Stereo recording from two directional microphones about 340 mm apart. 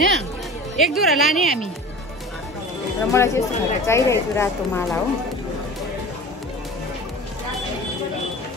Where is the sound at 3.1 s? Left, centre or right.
Centre.